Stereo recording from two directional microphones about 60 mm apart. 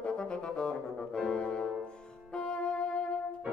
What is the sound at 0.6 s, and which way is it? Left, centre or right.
Music, centre.